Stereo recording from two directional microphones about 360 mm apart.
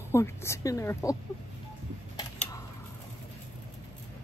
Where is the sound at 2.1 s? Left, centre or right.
Centre.